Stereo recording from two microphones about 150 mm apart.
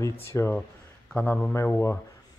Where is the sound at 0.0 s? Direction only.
20° left (ahead or behind).